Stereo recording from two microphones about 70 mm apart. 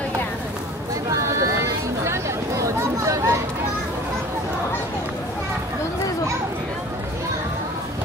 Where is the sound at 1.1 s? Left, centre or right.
Right.